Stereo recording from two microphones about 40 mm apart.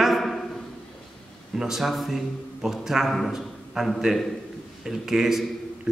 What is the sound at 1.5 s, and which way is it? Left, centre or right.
A man's voice, centre.